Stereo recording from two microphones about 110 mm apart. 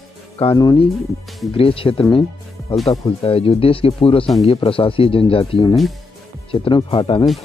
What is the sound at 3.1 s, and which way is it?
Speech, 60° left (ahead or behind).